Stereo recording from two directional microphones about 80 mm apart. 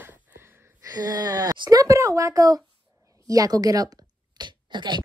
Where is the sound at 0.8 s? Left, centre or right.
Right.